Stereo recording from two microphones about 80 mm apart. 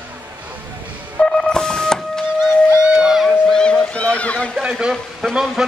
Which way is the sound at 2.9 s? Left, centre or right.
Centre.